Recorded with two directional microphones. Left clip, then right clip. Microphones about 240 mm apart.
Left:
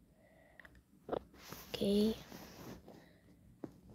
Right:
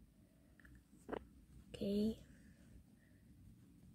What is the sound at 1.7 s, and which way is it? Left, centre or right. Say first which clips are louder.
Speech: left 7 dB; centre.